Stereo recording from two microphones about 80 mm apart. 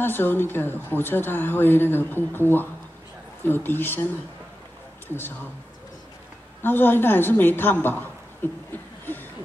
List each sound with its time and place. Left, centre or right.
0.0 s speech: left
6.6 s speech: left